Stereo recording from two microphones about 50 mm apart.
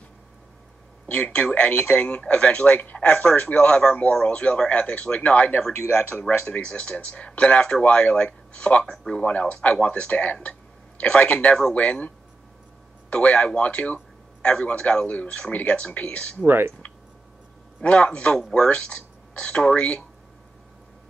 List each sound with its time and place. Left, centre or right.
1.1 s speech: left
8.9 s speech: centre
9.2 s speech: left
13.1 s a man's voice: left
16.4 s speech: right
17.8 s speech: left